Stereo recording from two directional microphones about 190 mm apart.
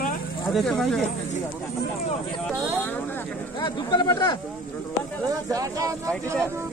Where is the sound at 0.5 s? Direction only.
Centre (ahead or behind).